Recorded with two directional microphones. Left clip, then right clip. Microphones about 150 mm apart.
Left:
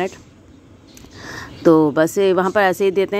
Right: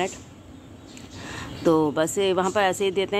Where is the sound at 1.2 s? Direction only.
40° left (ahead or behind).